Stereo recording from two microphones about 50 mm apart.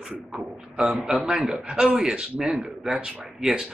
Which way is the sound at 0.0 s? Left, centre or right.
Centre.